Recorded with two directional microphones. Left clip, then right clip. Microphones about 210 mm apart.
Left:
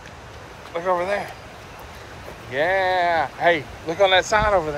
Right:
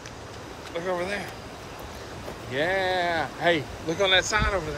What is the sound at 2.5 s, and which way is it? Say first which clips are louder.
Speech: left 5 dB; 15° right (ahead or behind).